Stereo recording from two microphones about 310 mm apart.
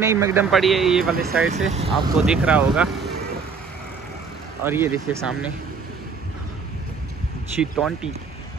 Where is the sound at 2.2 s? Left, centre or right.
Centre.